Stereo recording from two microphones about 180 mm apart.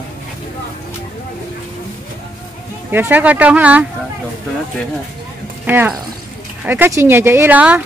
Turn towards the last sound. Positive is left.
turn(degrees=-10)  # may be behind; listen again after turning